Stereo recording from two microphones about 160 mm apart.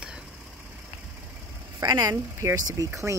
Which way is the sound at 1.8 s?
25° right (ahead or behind).